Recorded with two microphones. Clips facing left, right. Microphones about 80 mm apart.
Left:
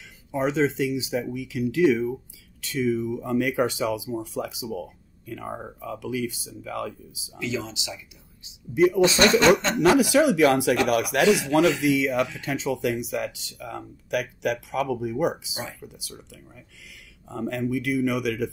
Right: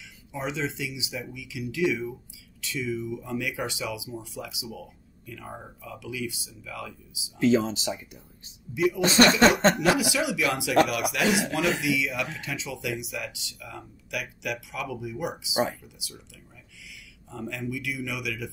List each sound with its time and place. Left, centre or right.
0.3 s speech: left
7.3 s speech: right
8.7 s speech: left
11.2 s speech: right
11.8 s speech: left
17.3 s speech: left